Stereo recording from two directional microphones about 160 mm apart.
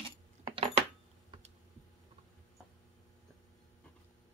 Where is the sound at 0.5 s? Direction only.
35° right (ahead or behind).